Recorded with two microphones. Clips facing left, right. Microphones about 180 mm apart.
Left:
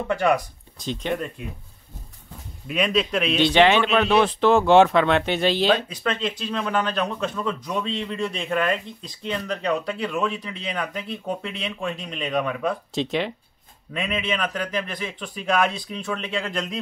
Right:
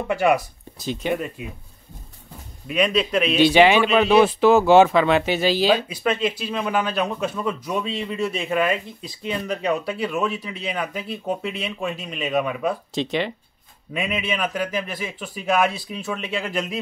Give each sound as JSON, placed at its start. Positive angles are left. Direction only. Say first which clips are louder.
{"t": 0.1, "sound": "a man's voice", "louder": "right 2 dB", "side_deg": -10}
{"t": 2.7, "sound": "a man's voice", "louder": "right 2 dB", "side_deg": 0}